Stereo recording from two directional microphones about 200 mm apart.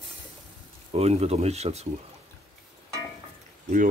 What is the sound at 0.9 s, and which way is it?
Speech, 30° right (ahead or behind).